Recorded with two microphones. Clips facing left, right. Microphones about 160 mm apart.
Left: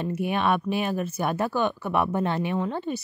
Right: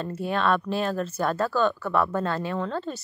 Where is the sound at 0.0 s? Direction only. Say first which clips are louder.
Left 1 dB; 15° left (ahead or behind).